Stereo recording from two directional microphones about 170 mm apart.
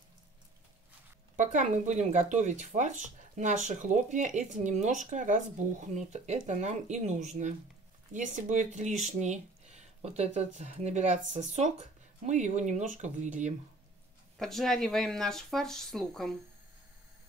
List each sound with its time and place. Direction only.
1.3 s speech: 45° right (ahead or behind)
14.4 s speech: centre (ahead or behind)